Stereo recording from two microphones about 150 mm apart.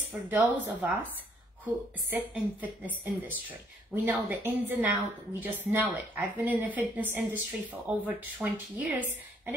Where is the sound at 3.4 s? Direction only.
10° right (ahead or behind).